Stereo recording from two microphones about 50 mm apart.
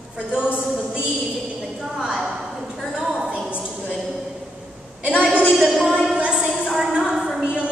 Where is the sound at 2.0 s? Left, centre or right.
Centre.